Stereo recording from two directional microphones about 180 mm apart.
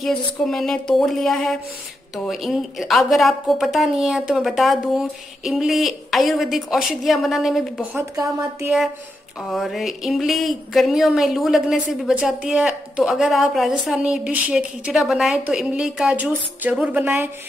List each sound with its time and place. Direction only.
0.0 s speech: centre (ahead or behind)
8.0 s speech: 15° right (ahead or behind)
9.5 s speech: centre (ahead or behind)